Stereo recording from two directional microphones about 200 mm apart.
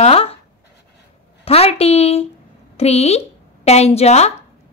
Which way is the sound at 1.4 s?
30° left (ahead or behind).